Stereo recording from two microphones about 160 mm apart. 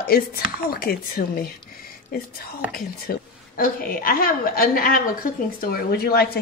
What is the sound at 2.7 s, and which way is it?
A woman's voice, 65° left (ahead or behind).